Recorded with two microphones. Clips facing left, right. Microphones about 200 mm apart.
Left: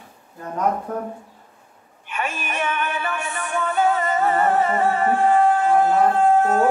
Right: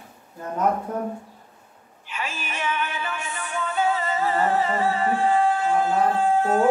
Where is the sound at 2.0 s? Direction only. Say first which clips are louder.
Left 5 dB; 60° left (ahead or behind).